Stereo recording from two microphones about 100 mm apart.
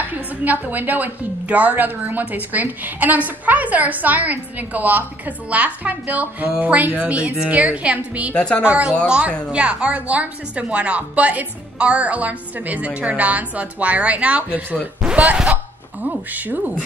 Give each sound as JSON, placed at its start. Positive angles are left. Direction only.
{"t": 0.0, "sound": "a woman's voice", "side_deg": -15}
{"t": 8.4, "sound": "speech", "side_deg": 10}
{"t": 8.6, "sound": "a woman's voice", "side_deg": -15}